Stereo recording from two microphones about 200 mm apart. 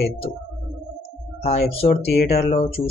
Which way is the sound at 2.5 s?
30° left (ahead or behind).